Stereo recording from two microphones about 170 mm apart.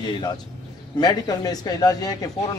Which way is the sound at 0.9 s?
25° left (ahead or behind).